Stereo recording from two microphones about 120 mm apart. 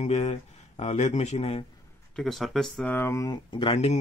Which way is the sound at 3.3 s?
45° left (ahead or behind).